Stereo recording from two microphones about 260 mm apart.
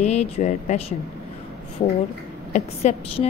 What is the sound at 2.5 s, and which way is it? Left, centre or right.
Speech, left.